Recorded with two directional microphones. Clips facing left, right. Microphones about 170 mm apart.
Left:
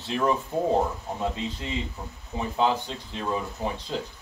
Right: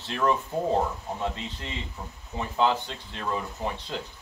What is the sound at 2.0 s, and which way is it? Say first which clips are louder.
Speech: left 1 dB; centre (ahead or behind).